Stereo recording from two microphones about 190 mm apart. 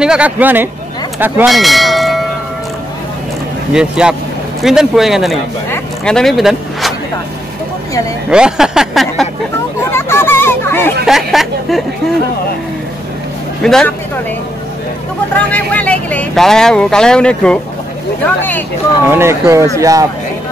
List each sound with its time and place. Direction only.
0.0 s speech: 5° right (ahead or behind)
3.7 s speech: 5° right (ahead or behind)
5.7 s vehicle: 5° left (ahead or behind)
8.3 s speech: 5° right (ahead or behind)
9.8 s hubbub: 15° left (ahead or behind)
11.1 s speech: centre (ahead or behind)
13.6 s speech: 5° left (ahead or behind)
15.3 s speech: 5° left (ahead or behind)
19.0 s speech: 15° right (ahead or behind)